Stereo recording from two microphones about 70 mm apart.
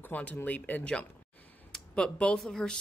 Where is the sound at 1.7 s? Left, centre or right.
Centre.